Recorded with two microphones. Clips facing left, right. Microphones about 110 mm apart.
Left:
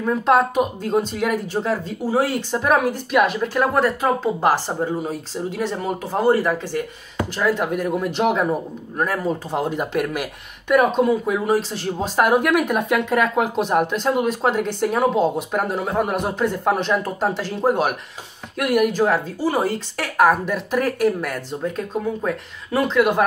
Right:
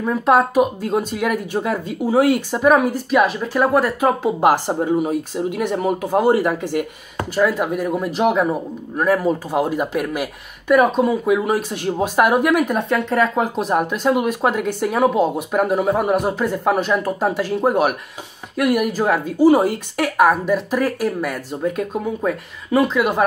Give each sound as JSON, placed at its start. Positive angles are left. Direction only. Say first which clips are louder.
{"t": 0.0, "sound": "a man's voice", "louder": "right 1 dB", "side_deg": -5}
{"t": 2.5, "sound": "a woman's voice", "louder": "right 1 dB", "side_deg": 0}
{"t": 7.3, "sound": "a man's voice", "louder": "right 3 dB", "side_deg": -5}
{"t": 12.2, "sound": "a man's voice", "louder": "right 1 dB", "side_deg": 0}
{"t": 20.2, "sound": "a man's voice", "louder": "right 1 dB", "side_deg": 0}